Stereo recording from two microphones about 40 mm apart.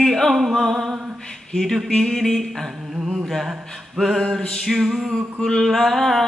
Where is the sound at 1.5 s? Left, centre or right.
Centre.